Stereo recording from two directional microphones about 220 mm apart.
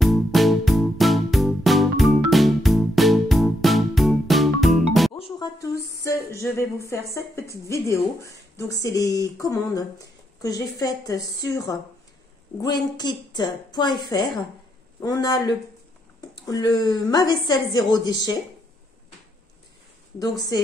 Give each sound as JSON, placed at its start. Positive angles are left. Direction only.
{"t": 0.0, "sound": "music", "side_deg": 0}
{"t": 5.1, "sound": "speech", "side_deg": 20}
{"t": 7.6, "sound": "a woman's voice", "side_deg": 15}
{"t": 20.2, "sound": "a woman's voice", "side_deg": 15}